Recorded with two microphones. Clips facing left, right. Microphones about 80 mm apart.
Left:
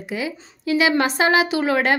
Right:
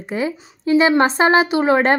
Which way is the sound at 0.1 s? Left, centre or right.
Right.